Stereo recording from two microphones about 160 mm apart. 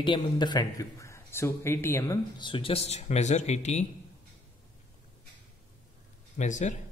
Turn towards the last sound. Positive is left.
turn(degrees=50)  # may be behind; listen again after turning